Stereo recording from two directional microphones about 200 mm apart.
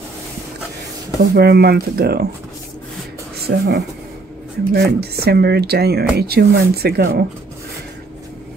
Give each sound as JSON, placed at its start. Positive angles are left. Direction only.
{"t": 1.3, "sound": "speech", "side_deg": -50}
{"t": 3.4, "sound": "speech", "side_deg": -60}